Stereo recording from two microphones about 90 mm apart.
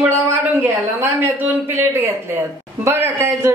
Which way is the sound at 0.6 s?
20° right (ahead or behind).